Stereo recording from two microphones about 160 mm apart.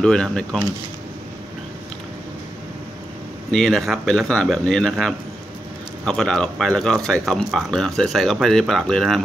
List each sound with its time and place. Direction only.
0.0 s speech: 5° left (ahead or behind)
3.5 s speech: centre (ahead or behind)